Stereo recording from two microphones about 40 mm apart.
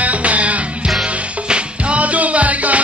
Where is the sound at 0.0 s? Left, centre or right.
Right.